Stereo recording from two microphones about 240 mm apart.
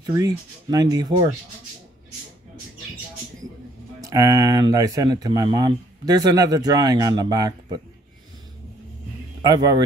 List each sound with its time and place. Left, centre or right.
0.0 s speech: centre
4.0 s speech: centre
9.4 s speech: centre